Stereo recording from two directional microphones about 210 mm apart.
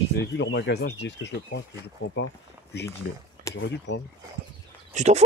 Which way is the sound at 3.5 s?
55° left (ahead or behind).